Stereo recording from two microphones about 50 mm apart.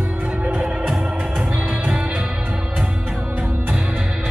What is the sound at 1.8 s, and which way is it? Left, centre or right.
Music, right.